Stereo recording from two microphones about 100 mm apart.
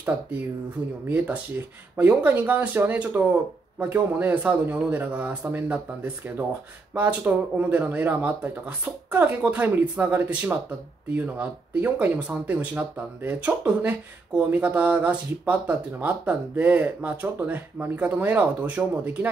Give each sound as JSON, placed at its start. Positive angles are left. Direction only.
{"t": 1.1, "sound": "speech", "side_deg": -15}